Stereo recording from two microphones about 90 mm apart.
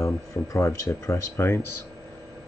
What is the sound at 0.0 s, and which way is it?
Speech, 35° left (ahead or behind).